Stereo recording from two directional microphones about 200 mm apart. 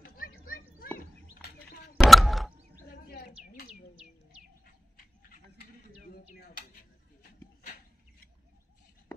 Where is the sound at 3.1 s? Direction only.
50° left (ahead or behind).